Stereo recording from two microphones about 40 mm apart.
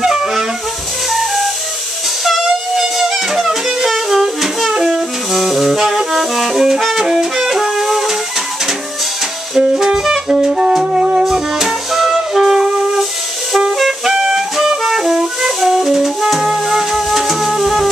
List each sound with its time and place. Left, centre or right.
0.0 s wind instrument: centre
1.1 s flute: centre
2.2 s music: centre
4.4 s saxophone: centre
9.6 s saxophone: centre
11.2 s music: centre
12.4 s wind instrument: centre
14.0 s flute: centre